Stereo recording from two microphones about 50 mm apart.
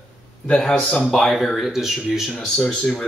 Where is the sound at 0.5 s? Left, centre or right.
Centre.